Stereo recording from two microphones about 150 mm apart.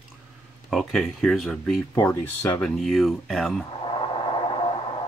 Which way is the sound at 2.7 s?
Centre (ahead or behind).